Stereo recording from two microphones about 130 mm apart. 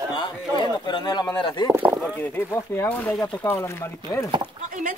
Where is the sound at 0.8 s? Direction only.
35° left (ahead or behind).